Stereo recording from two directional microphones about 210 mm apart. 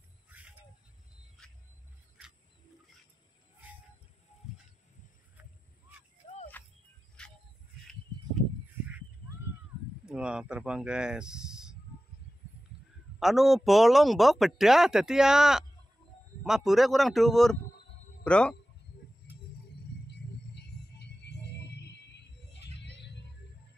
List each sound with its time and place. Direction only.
0.3 s music: 5° right (ahead or behind)
7.2 s music: 5° left (ahead or behind)
10.0 s speech: 5° right (ahead or behind)
13.2 s speech: centre (ahead or behind)
20.1 s music: 55° left (ahead or behind)